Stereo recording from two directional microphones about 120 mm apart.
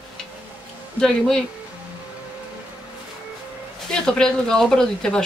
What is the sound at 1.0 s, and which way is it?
Speech, centre (ahead or behind).